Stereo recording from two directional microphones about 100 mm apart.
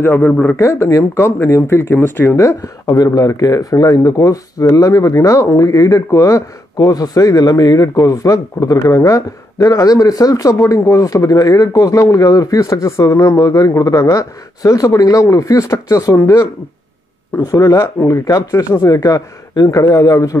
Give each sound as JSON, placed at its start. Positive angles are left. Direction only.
{"t": 0.0, "sound": "speech", "side_deg": 25}
{"t": 0.6, "sound": "speech", "side_deg": 25}
{"t": 2.2, "sound": "speech", "side_deg": 30}